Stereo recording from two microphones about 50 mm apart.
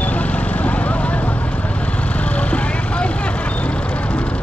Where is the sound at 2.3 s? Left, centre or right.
Left.